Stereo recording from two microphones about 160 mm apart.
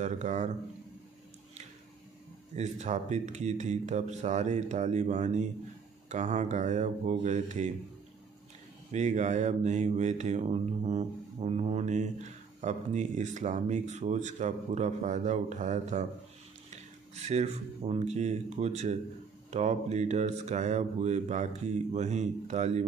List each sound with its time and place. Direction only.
0.0 s speech: 50° right (ahead or behind)
2.5 s speech: 45° right (ahead or behind)
8.9 s speech: 50° right (ahead or behind)